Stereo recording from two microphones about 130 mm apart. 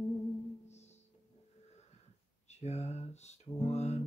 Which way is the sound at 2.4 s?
55° left (ahead or behind).